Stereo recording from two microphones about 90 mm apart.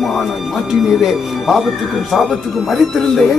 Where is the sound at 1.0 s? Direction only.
Centre (ahead or behind).